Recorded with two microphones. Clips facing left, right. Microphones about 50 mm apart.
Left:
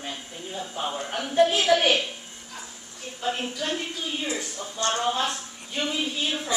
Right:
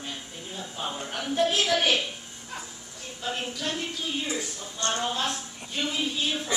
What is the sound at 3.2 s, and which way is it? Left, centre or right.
Speech, centre.